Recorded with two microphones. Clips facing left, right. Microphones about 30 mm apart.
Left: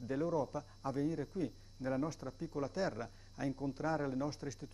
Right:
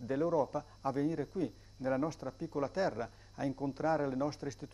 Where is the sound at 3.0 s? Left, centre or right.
Centre.